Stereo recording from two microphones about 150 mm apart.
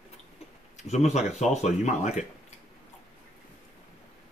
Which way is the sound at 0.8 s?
50° left (ahead or behind).